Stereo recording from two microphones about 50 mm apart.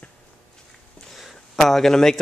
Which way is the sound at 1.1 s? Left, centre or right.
Centre.